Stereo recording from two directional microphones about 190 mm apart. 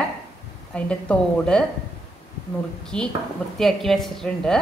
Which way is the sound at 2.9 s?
5° left (ahead or behind).